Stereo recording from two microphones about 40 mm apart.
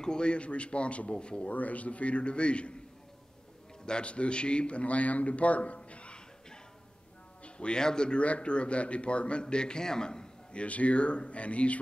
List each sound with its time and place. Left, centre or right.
0.0 s speech: left
1.5 s a man's voice: left
3.8 s a man's voice: left
7.4 s a sound: left
7.8 s speech: centre
8.2 s speech: left
10.5 s a man's voice: left